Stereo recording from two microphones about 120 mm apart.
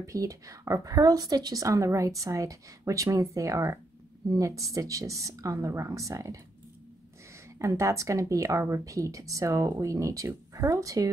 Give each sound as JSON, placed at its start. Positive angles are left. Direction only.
{"t": 0.0, "sound": "a woman's voice", "side_deg": -25}
{"t": 7.5, "sound": "a woman's voice", "side_deg": -25}